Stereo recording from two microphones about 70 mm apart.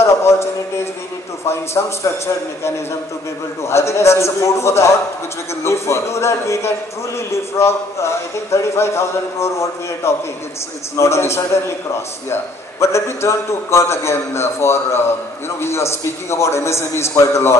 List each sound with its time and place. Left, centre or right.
0.0 s a sound: left
1.4 s a man's voice: left
3.6 s a man's voice: left
12.8 s a man's voice: left